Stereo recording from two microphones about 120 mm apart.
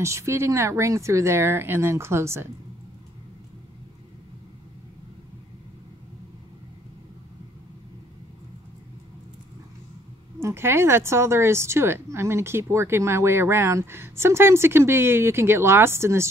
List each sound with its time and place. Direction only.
0.0 s speech: 25° right (ahead or behind)
10.4 s speech: 20° right (ahead or behind)